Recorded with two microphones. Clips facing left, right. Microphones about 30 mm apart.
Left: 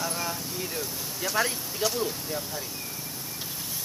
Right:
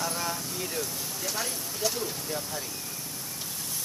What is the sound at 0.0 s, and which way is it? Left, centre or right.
Vehicle, centre.